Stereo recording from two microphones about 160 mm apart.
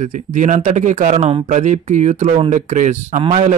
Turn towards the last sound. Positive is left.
turn(degrees=-45)  # may be behind; listen again after turning